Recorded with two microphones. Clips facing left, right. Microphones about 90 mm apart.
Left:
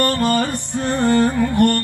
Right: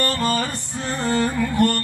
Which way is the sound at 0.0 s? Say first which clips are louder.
Left 4 dB; 60° left (ahead or behind).